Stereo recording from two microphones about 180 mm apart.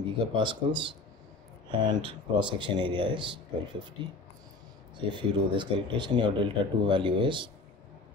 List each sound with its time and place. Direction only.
0.3 s speech: 25° right (ahead or behind)